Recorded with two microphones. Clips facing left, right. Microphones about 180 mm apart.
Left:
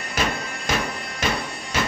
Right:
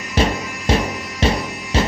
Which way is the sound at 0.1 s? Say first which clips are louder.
Right 7 dB; 30° right (ahead or behind).